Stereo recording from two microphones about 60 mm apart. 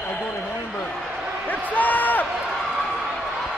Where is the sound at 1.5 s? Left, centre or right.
Left.